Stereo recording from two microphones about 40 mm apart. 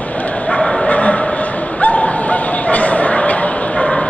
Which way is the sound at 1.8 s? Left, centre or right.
Left.